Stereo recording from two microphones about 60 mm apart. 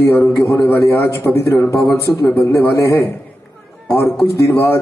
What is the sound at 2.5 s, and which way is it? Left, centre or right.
Speech, left.